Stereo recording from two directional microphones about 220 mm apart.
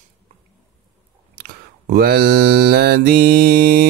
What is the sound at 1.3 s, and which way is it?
Mantra, 45° right (ahead or behind).